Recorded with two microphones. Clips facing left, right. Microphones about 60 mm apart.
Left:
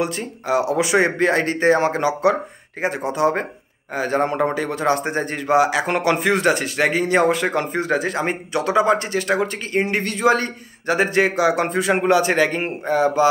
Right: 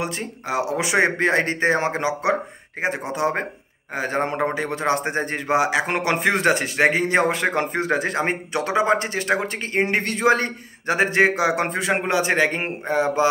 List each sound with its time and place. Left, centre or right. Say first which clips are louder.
0.0 s a man's voice: left 4 dB; right